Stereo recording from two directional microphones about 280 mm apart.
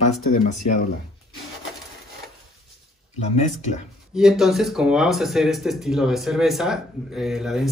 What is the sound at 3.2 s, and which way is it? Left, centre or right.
Speech, left.